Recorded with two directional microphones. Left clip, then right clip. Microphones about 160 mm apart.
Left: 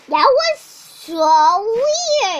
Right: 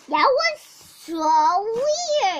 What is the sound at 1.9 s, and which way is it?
Speech, 50° right (ahead or behind).